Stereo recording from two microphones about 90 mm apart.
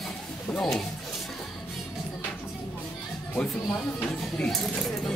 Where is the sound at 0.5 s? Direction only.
5° left (ahead or behind).